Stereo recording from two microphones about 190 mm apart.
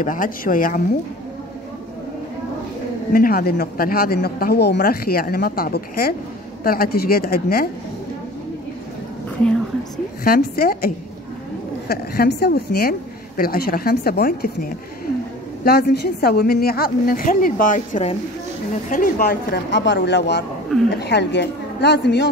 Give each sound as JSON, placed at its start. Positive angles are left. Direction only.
{"t": 0.0, "sound": "speech", "side_deg": 45}
{"t": 3.1, "sound": "speech", "side_deg": 50}
{"t": 10.2, "sound": "speech", "side_deg": 50}
{"t": 11.9, "sound": "a woman's voice", "side_deg": 55}